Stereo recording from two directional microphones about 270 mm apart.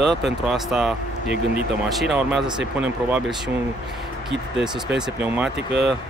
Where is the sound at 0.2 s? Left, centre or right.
Centre.